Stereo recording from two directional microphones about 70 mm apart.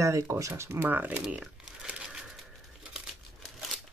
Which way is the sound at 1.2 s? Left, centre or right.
Centre.